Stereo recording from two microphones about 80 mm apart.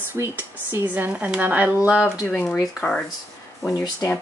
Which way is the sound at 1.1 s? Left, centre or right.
Centre.